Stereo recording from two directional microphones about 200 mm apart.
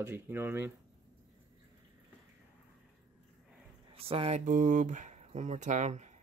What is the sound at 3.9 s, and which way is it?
Speech, 30° right (ahead or behind).